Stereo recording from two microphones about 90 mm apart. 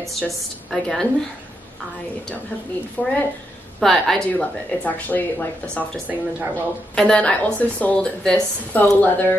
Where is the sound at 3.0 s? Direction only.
20° left (ahead or behind).